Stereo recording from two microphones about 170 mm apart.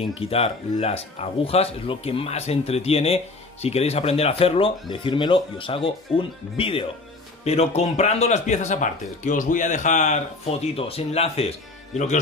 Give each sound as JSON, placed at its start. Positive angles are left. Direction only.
{"t": 0.1, "sound": "speech", "side_deg": 35}